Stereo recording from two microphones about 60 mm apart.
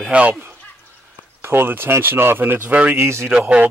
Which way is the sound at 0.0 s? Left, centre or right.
Right.